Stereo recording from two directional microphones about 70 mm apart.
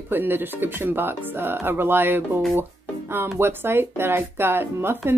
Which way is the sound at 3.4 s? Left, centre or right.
Right.